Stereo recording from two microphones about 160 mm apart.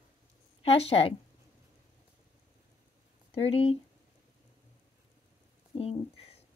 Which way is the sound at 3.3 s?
35° left (ahead or behind).